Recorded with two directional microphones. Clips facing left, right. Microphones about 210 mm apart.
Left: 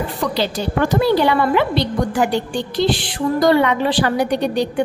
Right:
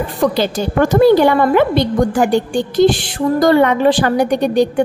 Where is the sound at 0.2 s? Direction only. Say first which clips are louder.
Right 6 dB; 50° right (ahead or behind).